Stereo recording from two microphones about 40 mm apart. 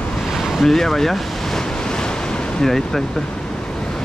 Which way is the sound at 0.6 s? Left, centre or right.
Centre.